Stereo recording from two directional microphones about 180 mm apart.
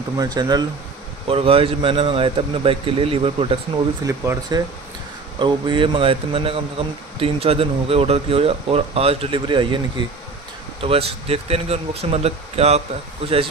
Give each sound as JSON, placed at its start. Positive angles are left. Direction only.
{"t": 0.2, "sound": "speech", "side_deg": -20}
{"t": 4.0, "sound": "speech", "side_deg": -15}